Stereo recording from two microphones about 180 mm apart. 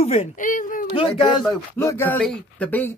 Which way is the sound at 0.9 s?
30° left (ahead or behind).